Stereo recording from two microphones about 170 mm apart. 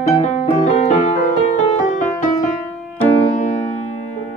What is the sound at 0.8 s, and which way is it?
Music, 45° left (ahead or behind).